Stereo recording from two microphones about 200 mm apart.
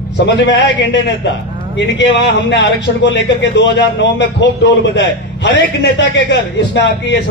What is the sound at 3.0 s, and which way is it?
A man's voice, 60° left (ahead or behind).